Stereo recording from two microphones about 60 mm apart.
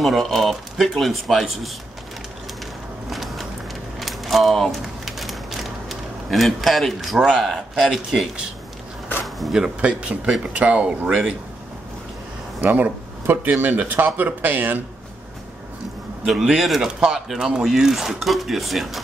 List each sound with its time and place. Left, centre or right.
0.0 s speech: centre
3.1 s a sound: centre
7.3 s speech: centre
9.2 s a sound: centre
9.8 s speech: centre
12.6 s speech: right
16.3 s speech: centre